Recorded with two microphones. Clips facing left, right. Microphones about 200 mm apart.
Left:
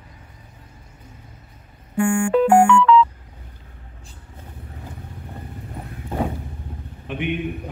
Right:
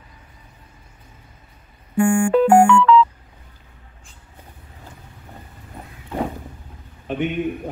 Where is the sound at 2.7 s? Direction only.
40° right (ahead or behind).